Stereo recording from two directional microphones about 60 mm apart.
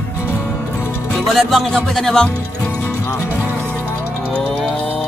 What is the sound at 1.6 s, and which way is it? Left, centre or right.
Music, centre.